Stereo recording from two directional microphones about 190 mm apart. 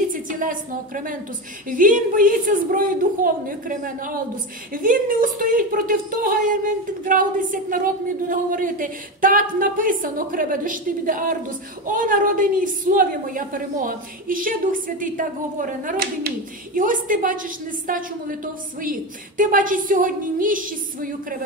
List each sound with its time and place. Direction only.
0.1 s a woman's voice: 45° right (ahead or behind)